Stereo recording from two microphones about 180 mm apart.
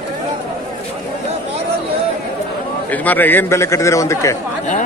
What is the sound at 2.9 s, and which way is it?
A man's voice, 10° left (ahead or behind).